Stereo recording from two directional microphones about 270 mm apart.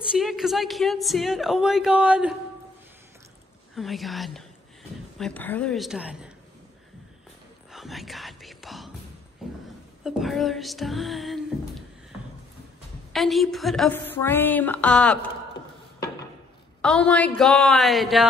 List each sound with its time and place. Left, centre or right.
0.1 s a woman's voice: centre
3.7 s a woman's voice: centre
7.7 s speech: centre
9.4 s a sound: centre
10.0 s a woman's voice: centre
13.1 s a woman's voice: centre
16.8 s a woman's voice: centre